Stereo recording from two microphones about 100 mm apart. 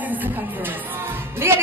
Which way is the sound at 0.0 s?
15° right (ahead or behind).